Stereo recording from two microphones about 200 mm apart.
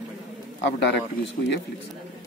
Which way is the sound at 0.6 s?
60° left (ahead or behind).